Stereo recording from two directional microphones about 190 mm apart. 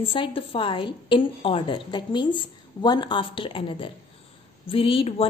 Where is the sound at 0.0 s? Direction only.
30° left (ahead or behind).